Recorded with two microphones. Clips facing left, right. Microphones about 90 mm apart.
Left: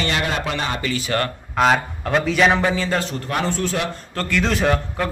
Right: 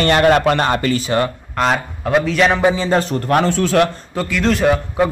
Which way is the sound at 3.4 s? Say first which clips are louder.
Right 8 dB; 80° right.